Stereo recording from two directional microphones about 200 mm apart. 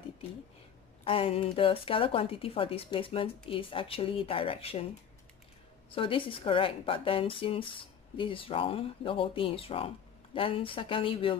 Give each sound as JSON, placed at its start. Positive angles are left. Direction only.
{"t": 1.0, "sound": "a woman's voice", "side_deg": 30}
{"t": 5.9, "sound": "a woman's voice", "side_deg": 25}